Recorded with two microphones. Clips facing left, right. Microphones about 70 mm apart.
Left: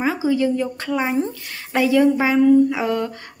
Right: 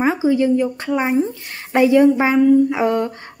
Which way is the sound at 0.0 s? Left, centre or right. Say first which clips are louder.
Right 3 dB; right.